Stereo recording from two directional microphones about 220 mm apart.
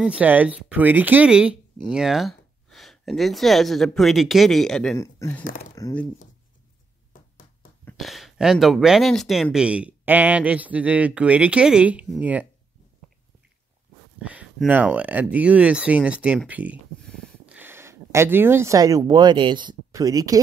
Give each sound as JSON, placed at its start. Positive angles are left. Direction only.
{"t": 0.0, "sound": "speech", "side_deg": -5}
{"t": 5.4, "sound": "speech", "side_deg": 40}
{"t": 5.8, "sound": "speech", "side_deg": 15}
{"t": 7.8, "sound": "speech", "side_deg": 0}
{"t": 14.2, "sound": "speech", "side_deg": -5}